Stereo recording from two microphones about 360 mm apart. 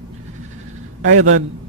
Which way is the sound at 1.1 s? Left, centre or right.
Right.